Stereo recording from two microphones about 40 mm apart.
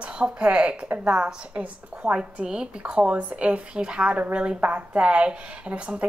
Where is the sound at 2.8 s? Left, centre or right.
Right.